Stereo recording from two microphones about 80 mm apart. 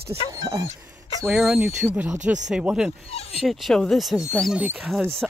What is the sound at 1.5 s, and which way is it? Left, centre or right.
Speech, right.